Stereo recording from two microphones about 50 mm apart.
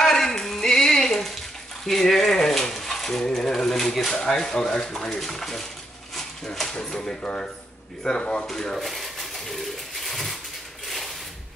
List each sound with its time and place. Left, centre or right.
0.0 s a sound: centre
5.1 s speech: centre
6.1 s dog: centre
6.7 s speech: centre
8.5 s speech: centre